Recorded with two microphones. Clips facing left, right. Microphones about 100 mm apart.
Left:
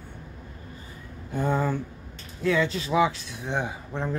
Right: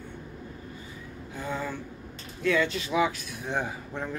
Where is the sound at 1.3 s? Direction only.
50° left (ahead or behind).